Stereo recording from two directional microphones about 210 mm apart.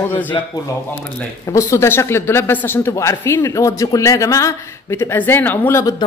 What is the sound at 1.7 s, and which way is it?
Speech, 15° left (ahead or behind).